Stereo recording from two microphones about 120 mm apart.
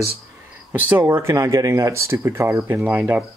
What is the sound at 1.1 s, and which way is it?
Speech, 20° right (ahead or behind).